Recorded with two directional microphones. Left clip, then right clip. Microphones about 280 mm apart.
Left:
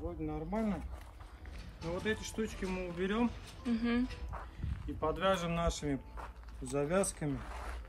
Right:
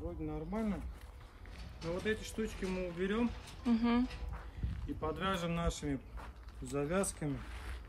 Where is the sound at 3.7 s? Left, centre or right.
Centre.